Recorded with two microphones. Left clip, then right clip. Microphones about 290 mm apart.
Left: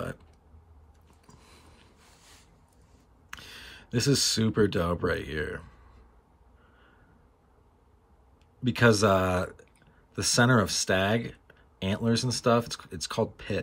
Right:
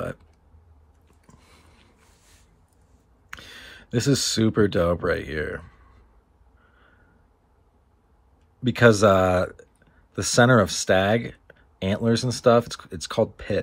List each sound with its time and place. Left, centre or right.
2.0 s a sound: centre
3.3 s speech: centre
8.6 s speech: centre